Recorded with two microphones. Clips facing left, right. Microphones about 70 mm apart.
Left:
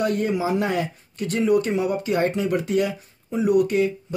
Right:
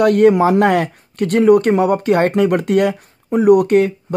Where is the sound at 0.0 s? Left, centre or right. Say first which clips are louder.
Right 12 dB; right.